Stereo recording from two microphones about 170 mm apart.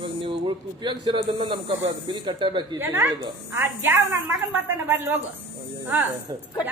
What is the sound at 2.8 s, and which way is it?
A woman's voice, 10° right (ahead or behind).